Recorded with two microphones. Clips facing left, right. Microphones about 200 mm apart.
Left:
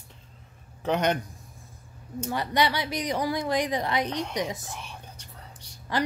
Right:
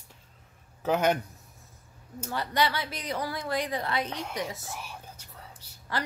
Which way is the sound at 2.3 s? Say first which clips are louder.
Left 2 dB; 15° left (ahead or behind).